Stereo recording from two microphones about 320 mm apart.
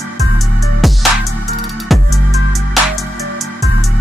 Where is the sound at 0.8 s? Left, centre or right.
Centre.